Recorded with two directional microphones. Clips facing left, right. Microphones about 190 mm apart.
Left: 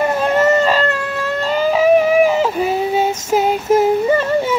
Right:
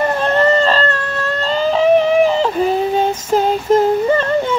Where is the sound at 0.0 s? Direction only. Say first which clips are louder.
Even; 10° left (ahead or behind).